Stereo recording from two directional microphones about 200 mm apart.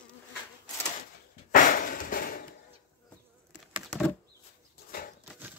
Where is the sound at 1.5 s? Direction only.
45° left (ahead or behind).